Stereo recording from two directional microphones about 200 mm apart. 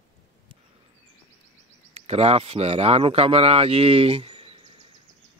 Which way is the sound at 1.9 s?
30° right (ahead or behind).